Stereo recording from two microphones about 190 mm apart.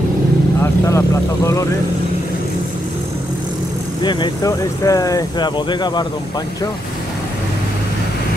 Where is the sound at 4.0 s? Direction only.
25° left (ahead or behind).